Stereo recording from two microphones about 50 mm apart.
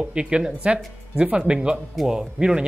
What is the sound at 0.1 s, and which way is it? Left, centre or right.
Speech, centre.